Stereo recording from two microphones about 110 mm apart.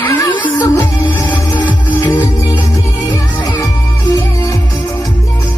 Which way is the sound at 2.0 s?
25° left (ahead or behind).